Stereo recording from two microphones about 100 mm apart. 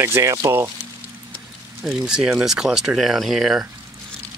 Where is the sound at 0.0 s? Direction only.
30° right (ahead or behind).